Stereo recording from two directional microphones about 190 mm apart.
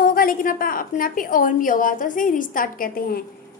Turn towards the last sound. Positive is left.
turn(degrees=50)  # may be behind; listen again after turning